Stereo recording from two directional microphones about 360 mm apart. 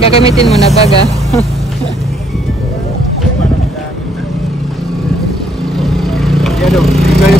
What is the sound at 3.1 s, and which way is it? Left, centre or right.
Vehicle, centre.